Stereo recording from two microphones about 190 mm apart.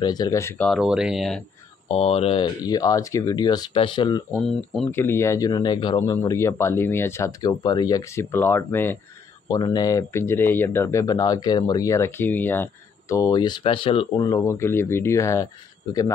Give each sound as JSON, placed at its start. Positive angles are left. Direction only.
{"t": 0.0, "sound": "speech", "side_deg": 20}
{"t": 0.7, "sound": "speech", "side_deg": -5}
{"t": 1.9, "sound": "speech", "side_deg": 30}
{"t": 4.3, "sound": "speech", "side_deg": 0}
{"t": 4.9, "sound": "speech", "side_deg": 15}
{"t": 9.5, "sound": "speech", "side_deg": 20}